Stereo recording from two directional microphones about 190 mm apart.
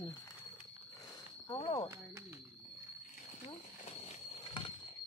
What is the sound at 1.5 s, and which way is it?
Speech, 30° left (ahead or behind).